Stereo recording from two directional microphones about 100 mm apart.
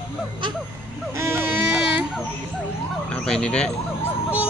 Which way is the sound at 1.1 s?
25° right (ahead or behind).